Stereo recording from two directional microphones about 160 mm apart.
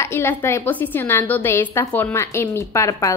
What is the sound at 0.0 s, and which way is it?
A woman's voice, 15° left (ahead or behind).